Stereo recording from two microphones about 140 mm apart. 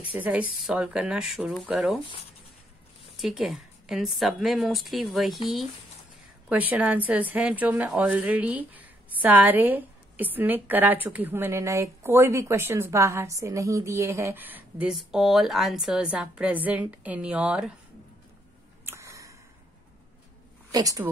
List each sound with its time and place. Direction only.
0.0 s a woman's voice: 10° right (ahead or behind)
3.2 s a woman's voice: centre (ahead or behind)
6.5 s a woman's voice: 10° right (ahead or behind)
18.9 s a sound: 20° right (ahead or behind)
20.7 s a woman's voice: 25° right (ahead or behind)